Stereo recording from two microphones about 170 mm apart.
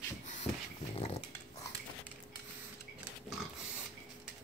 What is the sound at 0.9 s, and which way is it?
Dog, 35° left (ahead or behind).